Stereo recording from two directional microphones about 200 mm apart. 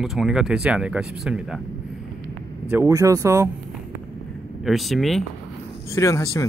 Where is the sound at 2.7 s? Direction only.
15° right (ahead or behind).